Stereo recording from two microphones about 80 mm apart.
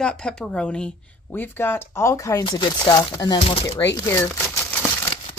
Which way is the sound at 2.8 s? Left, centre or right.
Left.